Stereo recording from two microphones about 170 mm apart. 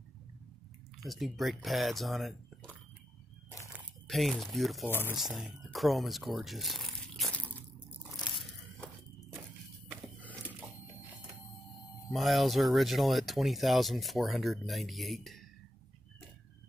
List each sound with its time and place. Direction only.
1.0 s speech: centre (ahead or behind)
4.1 s speech: centre (ahead or behind)
12.1 s speech: centre (ahead or behind)